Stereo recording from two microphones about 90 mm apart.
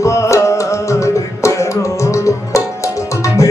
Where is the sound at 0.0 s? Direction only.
35° left (ahead or behind).